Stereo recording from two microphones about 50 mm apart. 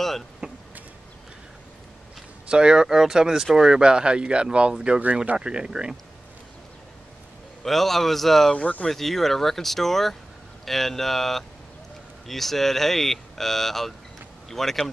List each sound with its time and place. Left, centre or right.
0.4 s a sound: right
2.5 s speech: centre
7.6 s speech: centre
8.5 s speech: left
8.8 s speech: centre